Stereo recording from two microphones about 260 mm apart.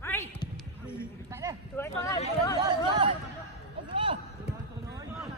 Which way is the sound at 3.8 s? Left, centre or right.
Centre.